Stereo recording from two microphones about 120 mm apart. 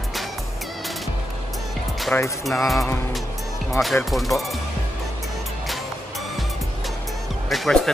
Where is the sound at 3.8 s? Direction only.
Centre (ahead or behind).